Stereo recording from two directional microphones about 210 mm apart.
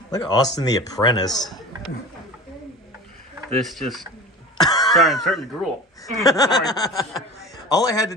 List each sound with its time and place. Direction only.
0.1 s speech: 20° left (ahead or behind)
1.3 s speech: centre (ahead or behind)
3.4 s speech: centre (ahead or behind)
4.6 s throat clearing: 20° left (ahead or behind)
4.9 s speech: centre (ahead or behind)
6.2 s snicker: 15° left (ahead or behind)